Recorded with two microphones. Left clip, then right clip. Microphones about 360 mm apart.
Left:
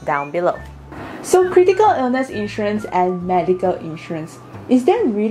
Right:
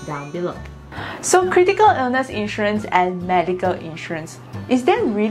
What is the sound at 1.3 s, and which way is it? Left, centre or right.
A woman's voice, right.